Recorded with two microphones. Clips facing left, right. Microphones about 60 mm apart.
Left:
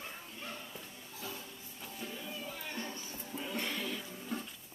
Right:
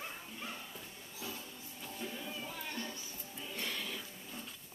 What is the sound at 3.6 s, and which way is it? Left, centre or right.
Music, centre.